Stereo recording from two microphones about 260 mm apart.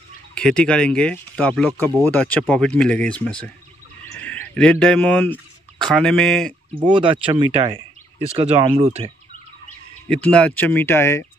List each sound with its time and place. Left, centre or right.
0.3 s speech: centre
4.0 s bird: centre
5.9 s speech: centre
6.8 s speech: centre
10.0 s speech: centre